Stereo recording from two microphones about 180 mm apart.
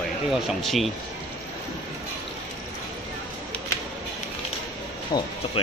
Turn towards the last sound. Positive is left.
turn(degrees=25)  # may be behind; listen again after turning